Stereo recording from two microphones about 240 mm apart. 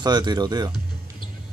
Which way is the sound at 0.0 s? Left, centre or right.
Centre.